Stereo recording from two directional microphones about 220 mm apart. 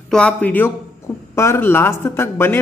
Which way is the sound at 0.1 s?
5° left (ahead or behind).